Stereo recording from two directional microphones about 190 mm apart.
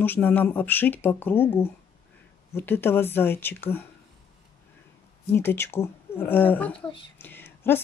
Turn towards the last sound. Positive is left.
turn(degrees=10)  # may be behind; listen again after turning